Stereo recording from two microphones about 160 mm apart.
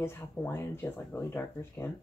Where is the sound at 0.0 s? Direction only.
15° left (ahead or behind).